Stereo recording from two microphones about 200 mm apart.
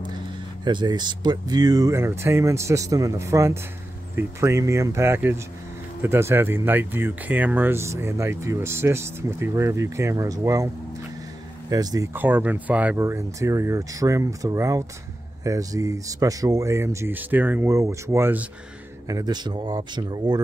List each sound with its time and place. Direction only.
0.7 s speech: 20° right (ahead or behind)
11.7 s speech: 20° right (ahead or behind)